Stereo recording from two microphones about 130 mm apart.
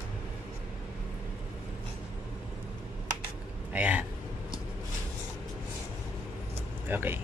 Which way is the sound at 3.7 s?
10° right (ahead or behind).